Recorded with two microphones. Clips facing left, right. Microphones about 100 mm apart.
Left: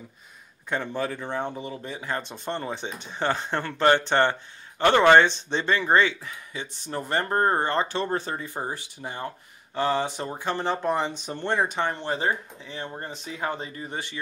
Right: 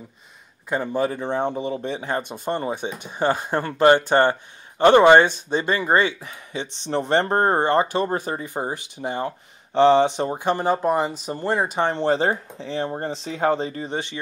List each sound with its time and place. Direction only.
0.7 s speech: 10° right (ahead or behind)
11.8 s speech: 30° right (ahead or behind)
13.8 s speech: 20° right (ahead or behind)